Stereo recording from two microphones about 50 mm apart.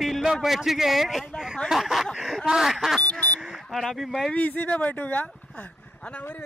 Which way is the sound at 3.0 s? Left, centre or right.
Left.